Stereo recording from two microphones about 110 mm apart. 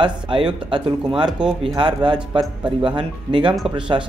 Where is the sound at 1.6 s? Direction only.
50° right (ahead or behind).